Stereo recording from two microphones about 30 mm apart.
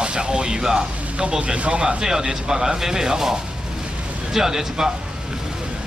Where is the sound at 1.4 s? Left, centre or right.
Right.